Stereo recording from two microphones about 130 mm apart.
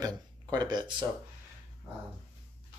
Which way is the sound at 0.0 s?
30° right (ahead or behind).